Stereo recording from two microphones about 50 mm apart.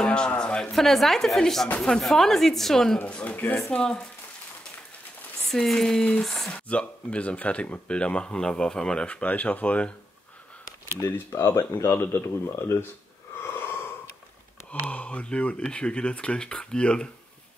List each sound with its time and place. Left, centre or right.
0.0 s cattle: centre
0.4 s speech: centre
3.1 s speech: centre
5.5 s speech: centre
6.5 s speech: left
9.0 s speech: left
11.4 s speech: left
13.5 s wheeze: left
14.7 s speech: left